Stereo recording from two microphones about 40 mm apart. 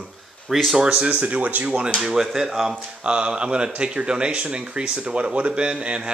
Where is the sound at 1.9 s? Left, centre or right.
Centre.